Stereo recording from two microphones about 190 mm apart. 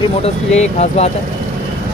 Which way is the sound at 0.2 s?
35° left (ahead or behind).